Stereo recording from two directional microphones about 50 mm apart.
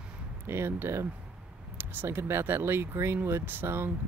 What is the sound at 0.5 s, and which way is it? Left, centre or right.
Speech, right.